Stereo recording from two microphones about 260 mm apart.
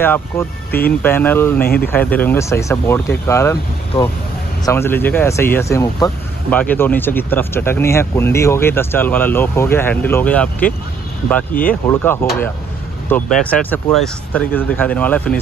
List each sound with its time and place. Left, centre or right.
0.0 s speech: centre
0.7 s speech: left
1.0 s speech: centre
1.6 s speech: left
2.1 s speech: centre
4.6 s speech: centre